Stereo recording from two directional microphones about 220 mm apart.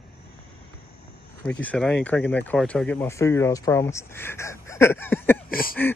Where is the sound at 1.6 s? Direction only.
5° left (ahead or behind).